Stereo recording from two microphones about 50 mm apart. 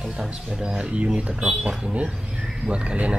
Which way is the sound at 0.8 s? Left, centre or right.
Right.